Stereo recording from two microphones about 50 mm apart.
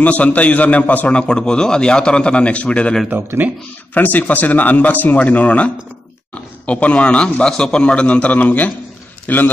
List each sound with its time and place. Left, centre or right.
0.0 s a man's voice: left
3.9 s a man's voice: left